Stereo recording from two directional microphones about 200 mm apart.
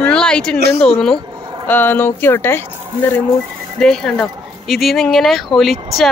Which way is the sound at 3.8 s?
5° left (ahead or behind).